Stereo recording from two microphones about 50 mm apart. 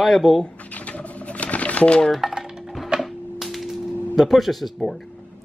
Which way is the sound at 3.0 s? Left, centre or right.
Centre.